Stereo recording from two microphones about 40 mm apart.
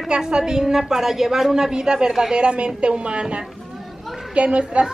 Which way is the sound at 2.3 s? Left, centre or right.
Right.